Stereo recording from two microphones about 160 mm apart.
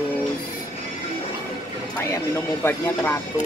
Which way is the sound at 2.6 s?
15° left (ahead or behind).